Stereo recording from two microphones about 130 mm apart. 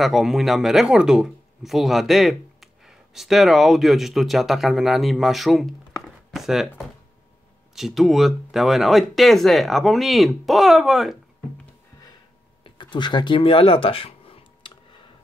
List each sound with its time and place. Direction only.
0.0 s speech: 5° right (ahead or behind)
7.7 s speech: centre (ahead or behind)
12.6 s a sound: 35° left (ahead or behind)